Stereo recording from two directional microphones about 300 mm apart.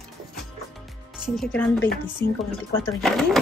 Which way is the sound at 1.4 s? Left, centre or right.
Centre.